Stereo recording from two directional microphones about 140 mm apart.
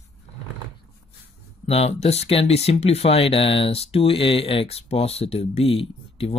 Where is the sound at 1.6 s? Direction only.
50° left (ahead or behind).